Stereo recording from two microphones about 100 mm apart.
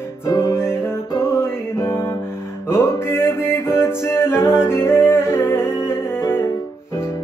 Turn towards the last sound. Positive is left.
turn(degrees=25)  # may be behind; listen again after turning